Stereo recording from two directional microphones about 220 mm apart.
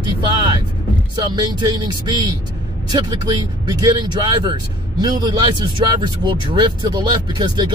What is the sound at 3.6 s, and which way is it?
Speech, 20° right (ahead or behind).